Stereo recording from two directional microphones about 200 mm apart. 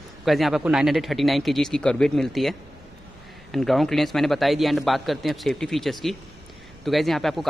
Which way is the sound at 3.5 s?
Centre (ahead or behind).